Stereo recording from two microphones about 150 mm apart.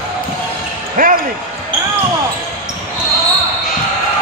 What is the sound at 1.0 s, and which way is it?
Speech, 70° right (ahead or behind).